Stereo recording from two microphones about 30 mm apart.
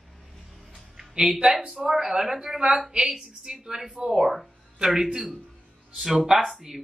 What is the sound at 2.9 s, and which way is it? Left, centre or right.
A woman's voice, right.